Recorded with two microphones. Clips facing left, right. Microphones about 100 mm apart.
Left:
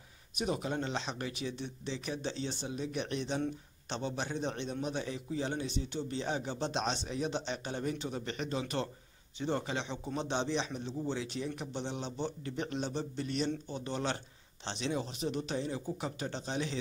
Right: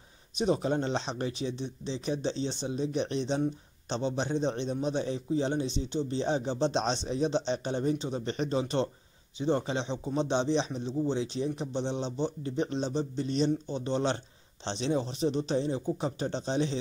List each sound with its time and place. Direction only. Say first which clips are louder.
0.4 s speech: right 7 dB; 30° right (ahead or behind)